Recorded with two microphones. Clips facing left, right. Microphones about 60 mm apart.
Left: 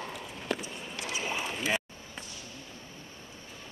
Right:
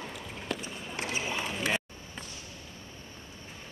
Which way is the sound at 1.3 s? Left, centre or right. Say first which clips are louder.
Even; centre.